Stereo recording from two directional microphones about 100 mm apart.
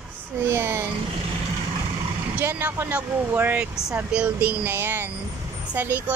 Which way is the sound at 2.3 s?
20° right (ahead or behind).